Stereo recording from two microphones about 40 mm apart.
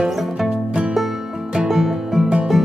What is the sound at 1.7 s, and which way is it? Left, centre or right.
Music, centre.